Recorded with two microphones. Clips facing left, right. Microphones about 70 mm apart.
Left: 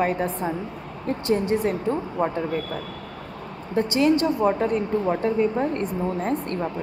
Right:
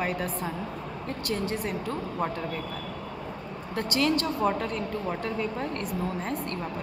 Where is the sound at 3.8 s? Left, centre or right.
Left.